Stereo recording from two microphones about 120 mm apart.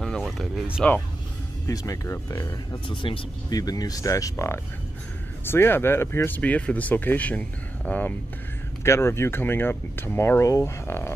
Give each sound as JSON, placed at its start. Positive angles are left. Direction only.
{"t": 0.0, "sound": "music", "side_deg": 0}
{"t": 1.7, "sound": "speech", "side_deg": 30}
{"t": 2.9, "sound": "speech", "side_deg": 45}
{"t": 8.8, "sound": "speech", "side_deg": 20}